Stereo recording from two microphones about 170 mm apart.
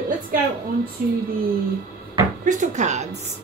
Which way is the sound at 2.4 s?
50° right (ahead or behind).